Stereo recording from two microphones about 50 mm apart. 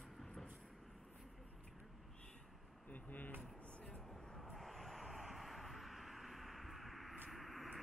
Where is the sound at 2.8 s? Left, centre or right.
Left.